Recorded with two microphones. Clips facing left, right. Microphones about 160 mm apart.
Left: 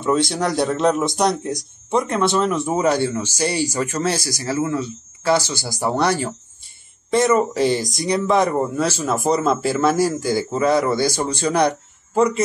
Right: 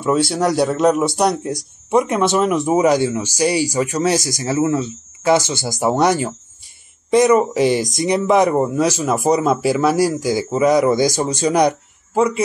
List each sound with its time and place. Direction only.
0.0 s speech: 5° right (ahead or behind)